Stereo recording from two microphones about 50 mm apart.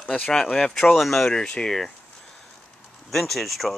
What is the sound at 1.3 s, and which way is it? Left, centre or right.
Speech, centre.